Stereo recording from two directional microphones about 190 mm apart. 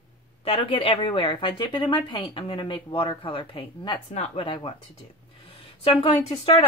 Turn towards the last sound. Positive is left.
turn(degrees=25)  # may be behind; listen again after turning